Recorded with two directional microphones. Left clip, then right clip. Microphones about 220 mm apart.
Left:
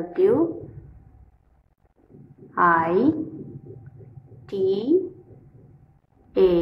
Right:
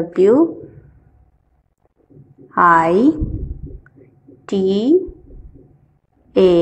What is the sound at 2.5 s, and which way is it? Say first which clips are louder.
Speech: right 7 dB; 35° right (ahead or behind).